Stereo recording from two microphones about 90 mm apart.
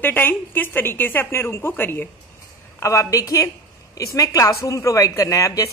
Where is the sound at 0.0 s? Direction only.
20° left (ahead or behind).